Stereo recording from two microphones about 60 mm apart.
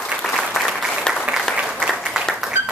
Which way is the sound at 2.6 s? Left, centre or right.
Right.